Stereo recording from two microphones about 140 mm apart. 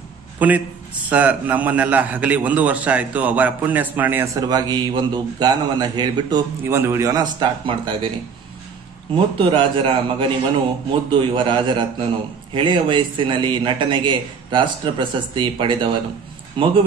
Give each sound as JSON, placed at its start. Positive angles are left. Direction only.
{"t": 0.4, "sound": "a man's voice", "side_deg": -10}
{"t": 4.4, "sound": "a man's voice", "side_deg": -30}
{"t": 6.6, "sound": "a man's voice", "side_deg": -15}
{"t": 9.1, "sound": "a man's voice", "side_deg": -35}